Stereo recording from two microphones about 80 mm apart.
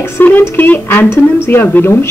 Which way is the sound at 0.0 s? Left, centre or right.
Left.